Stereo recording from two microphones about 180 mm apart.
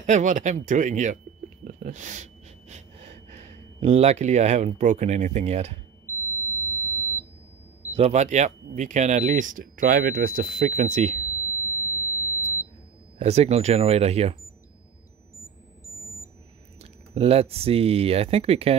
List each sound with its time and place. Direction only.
0.0 s a sound: 45° right (ahead or behind)
3.3 s speech: 40° right (ahead or behind)
6.0 s smoke detector: 15° left (ahead or behind)
7.9 s speech: 40° right (ahead or behind)
11.4 s smoke detector: 15° right (ahead or behind)
13.2 s speech: 35° right (ahead or behind)
17.1 s speech: 35° right (ahead or behind)